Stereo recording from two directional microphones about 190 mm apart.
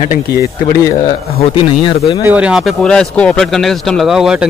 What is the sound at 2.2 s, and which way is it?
A man's voice, 10° right (ahead or behind).